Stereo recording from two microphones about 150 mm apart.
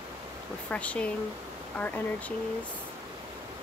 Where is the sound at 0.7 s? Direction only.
10° left (ahead or behind).